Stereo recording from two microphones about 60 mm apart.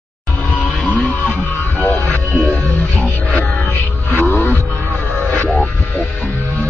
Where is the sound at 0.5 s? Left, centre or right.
Left.